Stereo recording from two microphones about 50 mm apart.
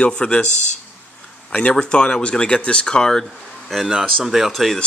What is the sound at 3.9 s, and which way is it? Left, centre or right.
Speech, centre.